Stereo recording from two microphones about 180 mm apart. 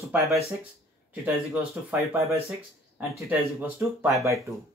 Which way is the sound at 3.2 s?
10° right (ahead or behind).